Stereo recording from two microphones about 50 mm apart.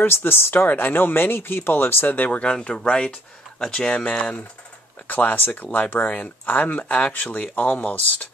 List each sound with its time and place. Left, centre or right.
0.0 s speech: left
2.4 s speech: centre
5.0 s speech: left